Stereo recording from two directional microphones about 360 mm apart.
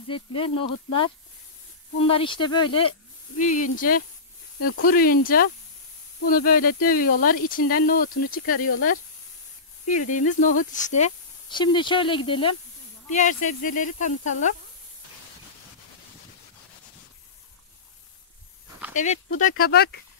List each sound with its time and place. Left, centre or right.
0.1 s speech: centre
2.0 s speech: centre
9.8 s speech: left
18.9 s speech: left